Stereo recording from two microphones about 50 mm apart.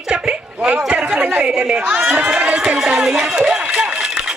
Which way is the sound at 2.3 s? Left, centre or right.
Right.